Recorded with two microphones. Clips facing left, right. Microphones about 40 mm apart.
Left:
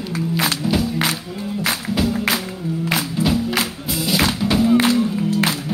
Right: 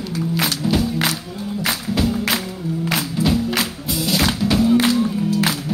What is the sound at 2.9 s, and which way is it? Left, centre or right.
Music, centre.